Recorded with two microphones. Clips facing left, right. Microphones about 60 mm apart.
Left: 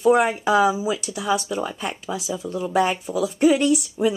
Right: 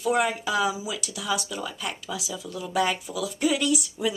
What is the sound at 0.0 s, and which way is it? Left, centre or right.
Speech, left.